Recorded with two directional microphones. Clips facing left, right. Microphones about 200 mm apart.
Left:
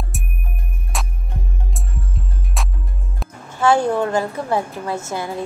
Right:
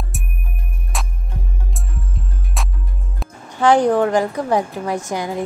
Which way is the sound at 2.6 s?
Centre (ahead or behind).